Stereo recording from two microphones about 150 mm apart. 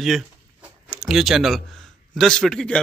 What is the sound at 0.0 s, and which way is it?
Speech, 5° right (ahead or behind).